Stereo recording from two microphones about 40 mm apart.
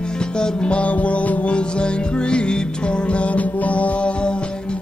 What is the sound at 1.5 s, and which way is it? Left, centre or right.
Music, left.